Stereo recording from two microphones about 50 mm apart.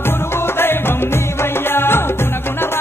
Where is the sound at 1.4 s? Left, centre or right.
Left.